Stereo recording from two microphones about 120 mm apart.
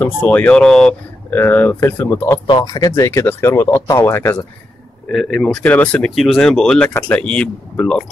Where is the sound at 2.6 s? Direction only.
30° left (ahead or behind).